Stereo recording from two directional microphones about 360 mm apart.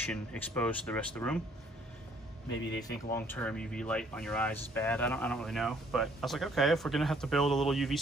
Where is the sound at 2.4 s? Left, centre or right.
Left.